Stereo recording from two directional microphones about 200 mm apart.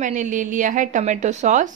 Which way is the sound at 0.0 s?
40° right (ahead or behind).